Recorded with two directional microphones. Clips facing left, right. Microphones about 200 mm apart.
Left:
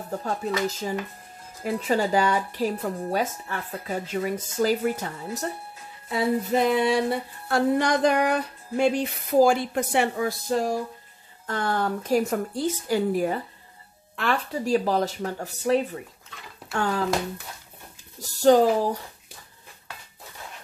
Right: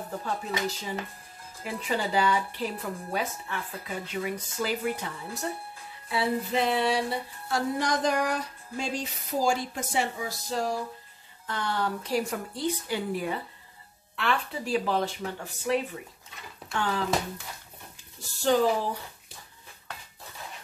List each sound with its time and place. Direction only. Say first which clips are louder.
0.2 s speech: left 5 dB; 45° left (ahead or behind)
6.0 s a sound: left 4 dB; 45° left (ahead or behind)
11.4 s speech: left 4 dB; 50° left (ahead or behind)
18.4 s speech: left 6 dB; 40° left (ahead or behind)